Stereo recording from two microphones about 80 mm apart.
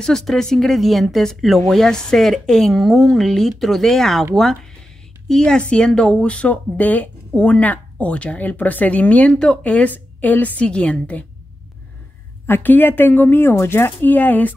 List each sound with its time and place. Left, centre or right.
0.0 s speech: centre
5.3 s speech: centre
12.4 s speech: left